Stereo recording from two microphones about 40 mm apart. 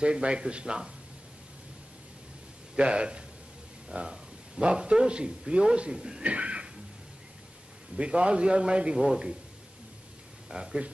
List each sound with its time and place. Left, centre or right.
0.0 s speech: right
2.7 s a man's voice: right
6.2 s a sound: right
8.0 s speech: right
8.9 s speech: centre
10.5 s speech: centre